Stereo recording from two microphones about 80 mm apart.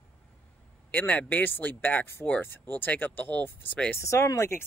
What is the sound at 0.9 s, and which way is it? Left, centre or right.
Speech, left.